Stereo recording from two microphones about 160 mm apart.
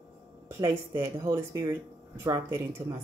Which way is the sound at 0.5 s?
15° right (ahead or behind).